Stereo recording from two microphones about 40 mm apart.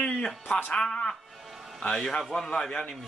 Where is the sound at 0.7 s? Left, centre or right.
Centre.